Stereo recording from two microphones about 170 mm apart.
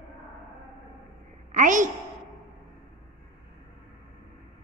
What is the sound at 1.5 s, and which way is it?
Speech, 50° right (ahead or behind).